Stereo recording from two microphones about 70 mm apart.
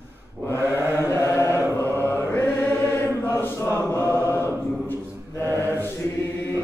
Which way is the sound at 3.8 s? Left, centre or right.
Left.